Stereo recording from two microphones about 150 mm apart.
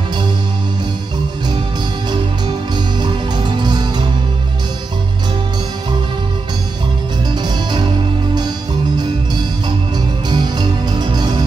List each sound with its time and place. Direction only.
2.0 s music: 30° right (ahead or behind)
10.3 s music: 30° right (ahead or behind)